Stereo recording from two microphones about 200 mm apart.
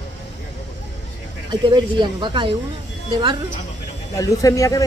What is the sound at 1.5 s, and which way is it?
Speech, 20° right (ahead or behind).